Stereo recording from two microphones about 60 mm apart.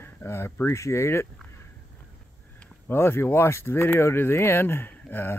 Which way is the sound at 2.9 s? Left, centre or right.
Left.